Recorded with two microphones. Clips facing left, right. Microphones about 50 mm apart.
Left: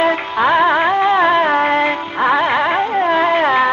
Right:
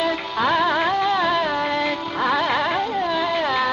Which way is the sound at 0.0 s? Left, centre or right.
Left.